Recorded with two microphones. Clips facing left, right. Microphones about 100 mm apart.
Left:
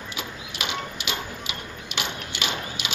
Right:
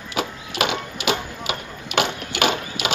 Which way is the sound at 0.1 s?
60° right (ahead or behind).